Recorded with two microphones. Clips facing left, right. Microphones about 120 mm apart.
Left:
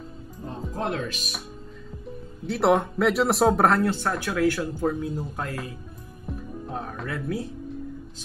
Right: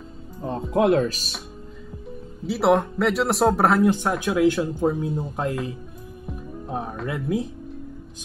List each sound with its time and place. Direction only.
0.4 s speech: 70° right (ahead or behind)
1.0 s speech: 35° right (ahead or behind)
2.4 s speech: centre (ahead or behind)
3.8 s speech: 15° right (ahead or behind)
6.7 s speech: 15° right (ahead or behind)